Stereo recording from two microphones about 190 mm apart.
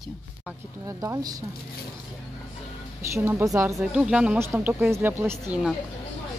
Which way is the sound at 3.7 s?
5° right (ahead or behind).